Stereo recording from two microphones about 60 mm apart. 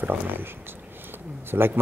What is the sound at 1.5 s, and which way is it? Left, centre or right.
Speech, right.